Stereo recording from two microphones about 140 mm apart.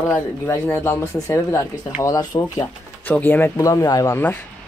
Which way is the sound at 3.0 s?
15° left (ahead or behind).